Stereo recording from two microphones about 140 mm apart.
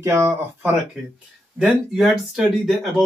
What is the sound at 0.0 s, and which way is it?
Speech, 20° right (ahead or behind).